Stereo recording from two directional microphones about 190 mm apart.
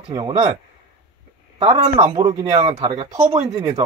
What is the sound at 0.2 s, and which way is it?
Speech, 35° right (ahead or behind).